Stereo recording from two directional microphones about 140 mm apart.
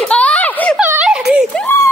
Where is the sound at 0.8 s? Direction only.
10° right (ahead or behind).